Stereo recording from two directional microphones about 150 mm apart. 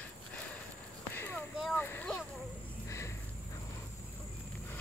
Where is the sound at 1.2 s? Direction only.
10° left (ahead or behind).